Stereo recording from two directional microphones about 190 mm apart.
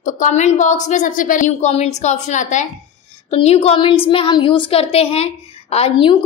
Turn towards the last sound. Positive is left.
turn(degrees=30)  # may be behind; listen again after turning